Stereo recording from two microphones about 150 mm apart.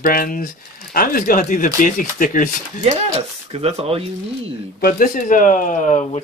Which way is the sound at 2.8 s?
45° right (ahead or behind).